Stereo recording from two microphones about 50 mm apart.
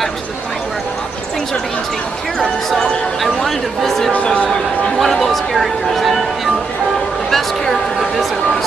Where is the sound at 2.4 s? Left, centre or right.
Centre.